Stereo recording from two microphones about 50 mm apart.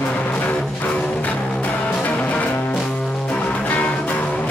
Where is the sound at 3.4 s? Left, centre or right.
Left.